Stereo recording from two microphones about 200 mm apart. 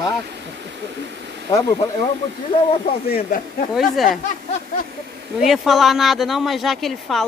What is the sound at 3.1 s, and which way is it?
Speech, 45° left (ahead or behind).